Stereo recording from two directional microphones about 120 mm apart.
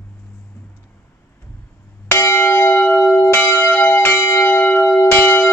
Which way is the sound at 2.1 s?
20° left (ahead or behind).